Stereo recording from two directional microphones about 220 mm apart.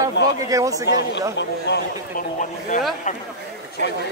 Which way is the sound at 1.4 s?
50° left (ahead or behind).